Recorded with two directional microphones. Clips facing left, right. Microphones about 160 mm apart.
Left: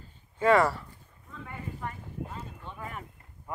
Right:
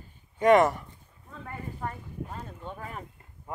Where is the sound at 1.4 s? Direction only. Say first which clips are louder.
Right 2 dB; 40° right (ahead or behind).